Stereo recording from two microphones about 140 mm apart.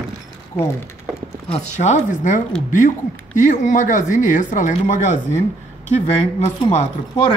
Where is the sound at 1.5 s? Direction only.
60° left (ahead or behind).